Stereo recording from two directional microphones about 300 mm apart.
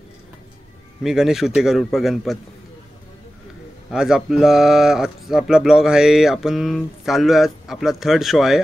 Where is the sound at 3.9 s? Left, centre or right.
Centre.